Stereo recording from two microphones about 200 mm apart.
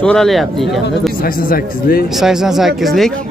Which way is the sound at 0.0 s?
5° left (ahead or behind).